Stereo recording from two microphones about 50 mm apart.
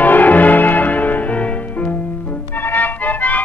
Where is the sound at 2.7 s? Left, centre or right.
Left.